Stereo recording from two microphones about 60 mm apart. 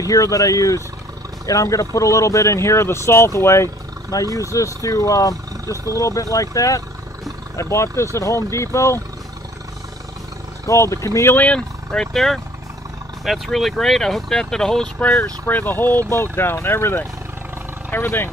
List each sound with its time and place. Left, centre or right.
0.0 s speech: left
4.1 s speech: left
7.7 s speech: left
10.7 s speech: left
11.3 s speech: centre
15.4 s speech: left
16.1 s speech: left